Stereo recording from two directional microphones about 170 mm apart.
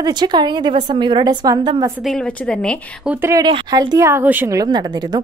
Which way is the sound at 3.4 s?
30° right (ahead or behind).